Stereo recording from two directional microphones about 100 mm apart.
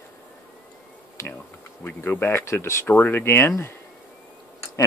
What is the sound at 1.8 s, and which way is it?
Speech, 20° left (ahead or behind).